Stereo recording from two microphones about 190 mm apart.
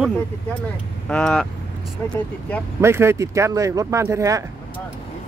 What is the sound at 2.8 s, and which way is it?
Speech, 15° right (ahead or behind).